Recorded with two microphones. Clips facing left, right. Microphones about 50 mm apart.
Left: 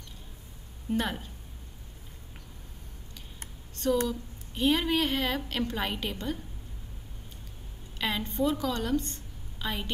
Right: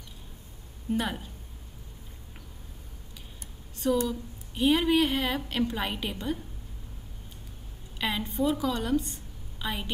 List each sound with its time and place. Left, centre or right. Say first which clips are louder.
0.8 s a woman's voice: even; centre
3.7 s a sound: right 1 dB; centre
4.1 s a woman's voice: right 1 dB; centre
8.0 s a woman's voice: even; centre